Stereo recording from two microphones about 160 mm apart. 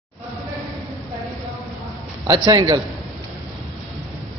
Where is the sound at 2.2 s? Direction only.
25° right (ahead or behind).